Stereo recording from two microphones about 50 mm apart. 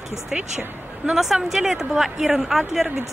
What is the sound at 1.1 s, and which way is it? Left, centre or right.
Speech, centre.